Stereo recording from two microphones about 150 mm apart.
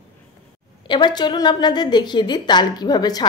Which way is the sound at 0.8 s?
30° left (ahead or behind).